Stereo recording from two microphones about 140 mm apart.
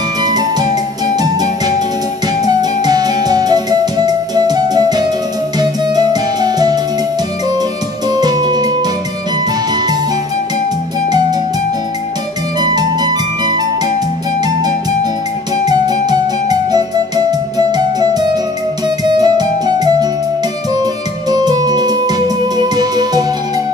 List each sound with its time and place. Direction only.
0.2 s music: 30° right (ahead or behind)
2.4 s music: 30° right (ahead or behind)
8.1 s music: 30° right (ahead or behind)
12.5 s music: 30° right (ahead or behind)
15.6 s music: 30° right (ahead or behind)